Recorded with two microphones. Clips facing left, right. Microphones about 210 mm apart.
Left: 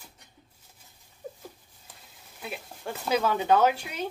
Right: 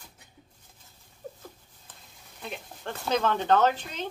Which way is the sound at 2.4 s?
5° left (ahead or behind).